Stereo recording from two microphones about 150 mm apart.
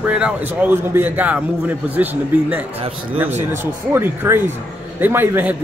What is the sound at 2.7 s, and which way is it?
Speech, 40° right (ahead or behind).